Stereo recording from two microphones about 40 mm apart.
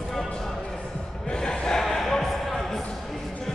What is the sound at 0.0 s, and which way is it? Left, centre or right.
Basketball bounce, centre.